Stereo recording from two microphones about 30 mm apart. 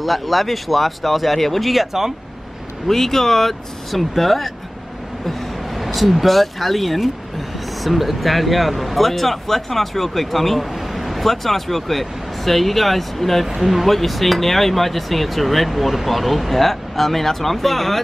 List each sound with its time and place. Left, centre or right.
0.0 s speech: centre
2.9 s speech: centre
5.2 s vehicle: centre
5.8 s speech: centre